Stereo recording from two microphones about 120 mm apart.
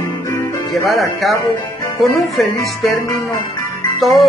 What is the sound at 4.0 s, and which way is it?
Speech, centre (ahead or behind).